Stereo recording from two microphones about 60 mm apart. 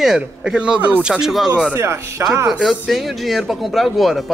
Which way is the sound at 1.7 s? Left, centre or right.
Right.